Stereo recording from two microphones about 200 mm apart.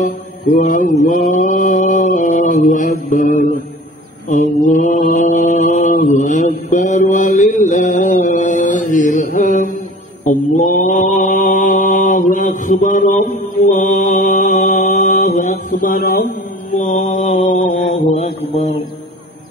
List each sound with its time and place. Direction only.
0.6 s mantra: 45° left (ahead or behind)
16.7 s mantra: 30° left (ahead or behind)